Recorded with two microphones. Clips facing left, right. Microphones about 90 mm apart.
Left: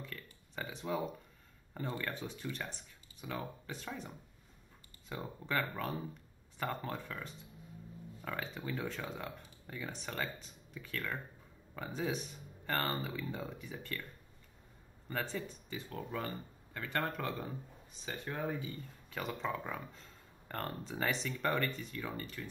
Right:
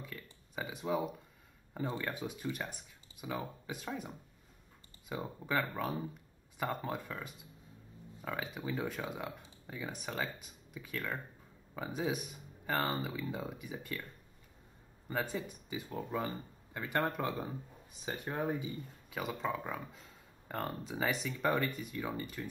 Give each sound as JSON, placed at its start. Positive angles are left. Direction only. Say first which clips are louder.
{"t": 0.0, "sound": "a sound", "louder": "even", "side_deg": -10}
{"t": 1.7, "sound": "speech", "louder": "right 2 dB", "side_deg": -15}
{"t": 5.1, "sound": "speech", "louder": "right 2 dB", "side_deg": -10}
{"t": 15.0, "sound": "speech", "louder": "right 2 dB", "side_deg": -10}
{"t": 19.1, "sound": "speech", "louder": "right 1 dB", "side_deg": -5}